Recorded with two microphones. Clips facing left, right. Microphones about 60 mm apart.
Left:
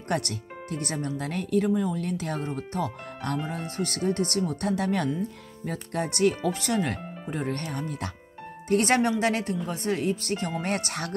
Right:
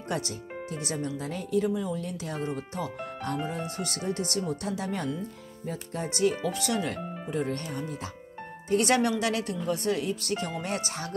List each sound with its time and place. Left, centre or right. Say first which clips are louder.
0.1 s speech: left 3 dB; left
6.5 s speech: left 2 dB; left
8.6 s speech: left 2 dB; left
10.6 s speech: left 3 dB; left